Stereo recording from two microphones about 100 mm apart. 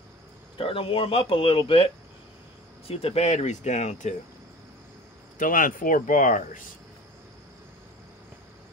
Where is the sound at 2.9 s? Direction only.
85° left.